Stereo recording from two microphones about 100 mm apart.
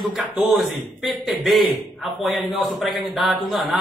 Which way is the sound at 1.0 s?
Centre (ahead or behind).